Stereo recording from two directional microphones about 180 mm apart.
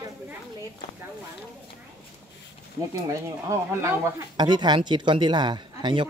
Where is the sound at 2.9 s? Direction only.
15° right (ahead or behind).